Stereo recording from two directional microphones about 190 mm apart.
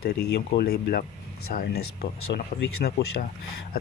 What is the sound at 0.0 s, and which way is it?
Speech, 55° left (ahead or behind).